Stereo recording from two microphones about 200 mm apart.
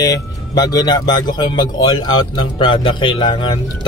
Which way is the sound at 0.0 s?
20° left (ahead or behind).